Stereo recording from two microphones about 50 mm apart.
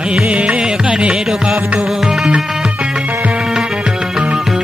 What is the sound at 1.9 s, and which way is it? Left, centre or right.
Music, centre.